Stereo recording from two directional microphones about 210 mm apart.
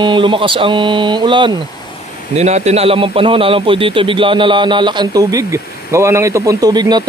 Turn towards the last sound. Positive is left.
turn(degrees=-20)  # may be behind; listen again after turning